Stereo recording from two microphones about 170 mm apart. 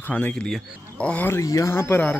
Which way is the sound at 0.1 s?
10° left (ahead or behind).